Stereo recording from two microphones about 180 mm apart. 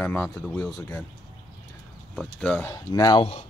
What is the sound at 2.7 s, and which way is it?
Speech, 20° left (ahead or behind).